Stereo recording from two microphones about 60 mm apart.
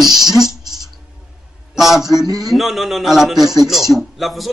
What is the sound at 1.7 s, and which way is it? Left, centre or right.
A man's voice, centre.